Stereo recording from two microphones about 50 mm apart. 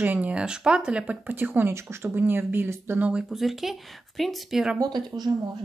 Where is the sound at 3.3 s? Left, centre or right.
Centre.